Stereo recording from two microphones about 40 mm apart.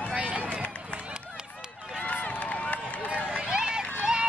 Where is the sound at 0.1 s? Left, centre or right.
Right.